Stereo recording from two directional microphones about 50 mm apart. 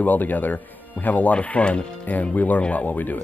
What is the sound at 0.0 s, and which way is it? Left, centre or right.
Speech, left.